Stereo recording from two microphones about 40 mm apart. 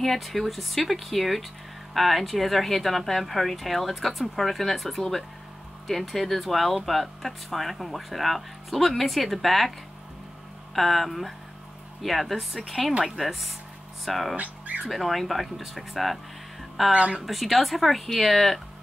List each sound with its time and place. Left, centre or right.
0.0 s speech: centre
14.3 s speech: right
14.9 s speech: centre
16.9 s a woman's voice: right
17.3 s speech: centre